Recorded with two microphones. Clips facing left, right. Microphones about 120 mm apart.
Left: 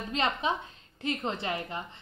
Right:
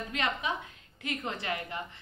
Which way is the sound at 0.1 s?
25° left (ahead or behind).